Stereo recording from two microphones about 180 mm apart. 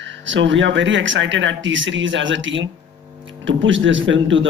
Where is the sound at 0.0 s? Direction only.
90° right.